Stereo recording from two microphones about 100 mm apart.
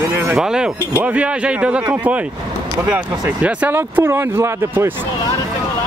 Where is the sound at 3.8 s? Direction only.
25° right (ahead or behind).